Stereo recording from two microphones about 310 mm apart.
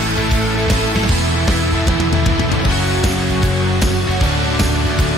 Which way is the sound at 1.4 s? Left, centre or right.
Centre.